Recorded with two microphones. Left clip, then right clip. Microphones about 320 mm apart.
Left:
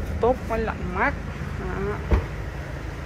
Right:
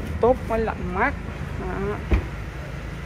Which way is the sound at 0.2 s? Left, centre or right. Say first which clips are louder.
Right 2 dB; centre.